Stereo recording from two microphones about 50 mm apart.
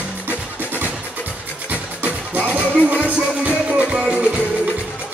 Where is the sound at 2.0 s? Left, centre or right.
Right.